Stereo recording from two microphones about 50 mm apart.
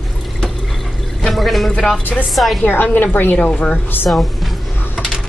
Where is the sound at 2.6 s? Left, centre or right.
Left.